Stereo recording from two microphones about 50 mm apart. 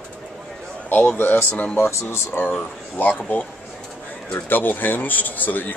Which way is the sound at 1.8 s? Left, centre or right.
Left.